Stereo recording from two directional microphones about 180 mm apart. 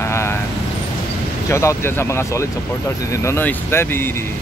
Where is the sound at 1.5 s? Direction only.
15° left (ahead or behind).